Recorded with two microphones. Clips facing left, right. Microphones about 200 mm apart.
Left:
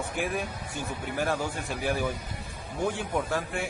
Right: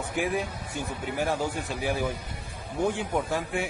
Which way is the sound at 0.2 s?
15° right (ahead or behind).